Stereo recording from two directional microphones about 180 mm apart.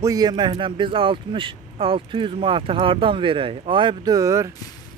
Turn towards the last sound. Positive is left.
turn(degrees=-15)  # may be behind; listen again after turning